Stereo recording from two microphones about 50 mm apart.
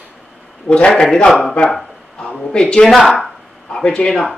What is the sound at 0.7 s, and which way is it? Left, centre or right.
Speech, left.